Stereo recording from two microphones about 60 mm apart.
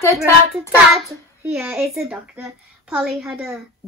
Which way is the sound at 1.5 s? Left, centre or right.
Centre.